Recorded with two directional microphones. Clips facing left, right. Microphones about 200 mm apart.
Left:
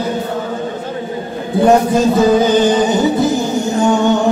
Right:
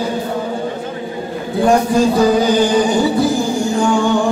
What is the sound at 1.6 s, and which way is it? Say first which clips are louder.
Music: left 2 dB; 20° left (ahead or behind).